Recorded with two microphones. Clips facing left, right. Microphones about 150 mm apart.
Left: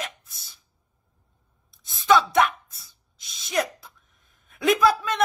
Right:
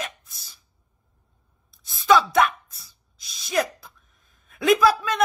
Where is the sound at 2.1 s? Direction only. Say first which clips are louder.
Right 1 dB; 20° left (ahead or behind).